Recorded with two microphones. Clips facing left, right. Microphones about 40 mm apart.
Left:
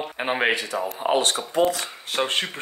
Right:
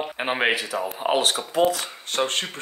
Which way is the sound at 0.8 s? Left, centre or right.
Centre.